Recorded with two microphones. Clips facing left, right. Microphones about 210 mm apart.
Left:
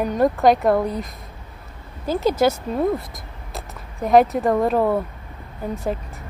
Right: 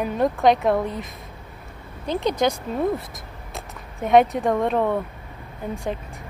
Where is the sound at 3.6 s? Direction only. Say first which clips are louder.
Left 2 dB; centre (ahead or behind).